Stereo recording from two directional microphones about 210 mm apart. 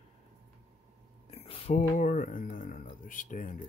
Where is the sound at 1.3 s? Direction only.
30° left (ahead or behind).